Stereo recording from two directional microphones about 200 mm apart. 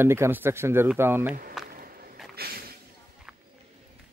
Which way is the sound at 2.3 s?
50° right (ahead or behind).